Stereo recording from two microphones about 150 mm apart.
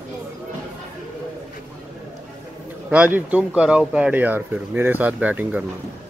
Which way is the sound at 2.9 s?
10° right (ahead or behind).